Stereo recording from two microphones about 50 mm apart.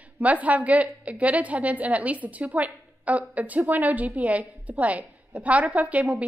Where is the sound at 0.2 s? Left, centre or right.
Right.